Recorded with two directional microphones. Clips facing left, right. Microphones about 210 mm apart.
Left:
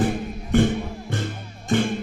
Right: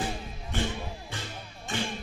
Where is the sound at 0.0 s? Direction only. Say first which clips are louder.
Left 11 dB; 55° left (ahead or behind).